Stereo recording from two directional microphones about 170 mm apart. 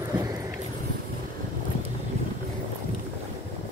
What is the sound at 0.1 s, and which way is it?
Vehicle, 20° right (ahead or behind).